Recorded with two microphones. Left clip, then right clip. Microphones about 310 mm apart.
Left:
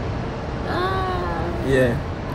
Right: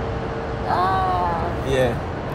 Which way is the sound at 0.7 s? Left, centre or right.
Centre.